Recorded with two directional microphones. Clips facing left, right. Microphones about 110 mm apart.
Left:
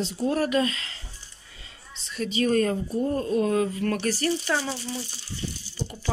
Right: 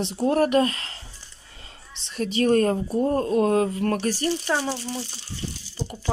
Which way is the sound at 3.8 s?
35° right (ahead or behind).